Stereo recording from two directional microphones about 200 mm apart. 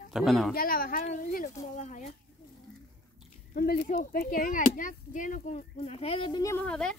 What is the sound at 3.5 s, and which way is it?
Speech, 45° left (ahead or behind).